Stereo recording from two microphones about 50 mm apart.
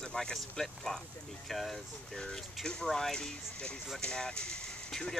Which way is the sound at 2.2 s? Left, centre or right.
Centre.